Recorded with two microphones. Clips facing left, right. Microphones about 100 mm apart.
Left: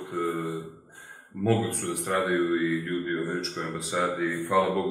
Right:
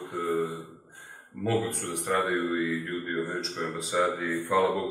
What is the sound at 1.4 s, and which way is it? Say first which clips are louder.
A man's voice: left 3 dB; centre (ahead or behind).